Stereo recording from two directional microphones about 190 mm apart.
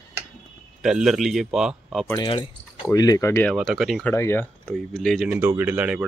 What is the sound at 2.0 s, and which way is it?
Speech, 20° left (ahead or behind).